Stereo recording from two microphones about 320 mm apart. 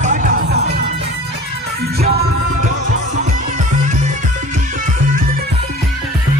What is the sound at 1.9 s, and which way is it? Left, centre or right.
Music, centre.